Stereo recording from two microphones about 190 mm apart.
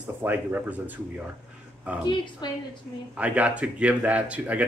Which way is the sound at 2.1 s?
25° left (ahead or behind).